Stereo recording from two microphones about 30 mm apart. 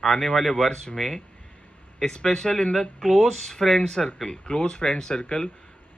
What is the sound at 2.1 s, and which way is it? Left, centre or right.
Speech, centre.